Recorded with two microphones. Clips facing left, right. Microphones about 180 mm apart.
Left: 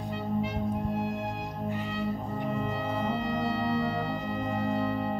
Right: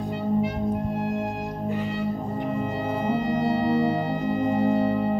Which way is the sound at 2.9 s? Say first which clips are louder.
Right 7 dB; 15° right (ahead or behind).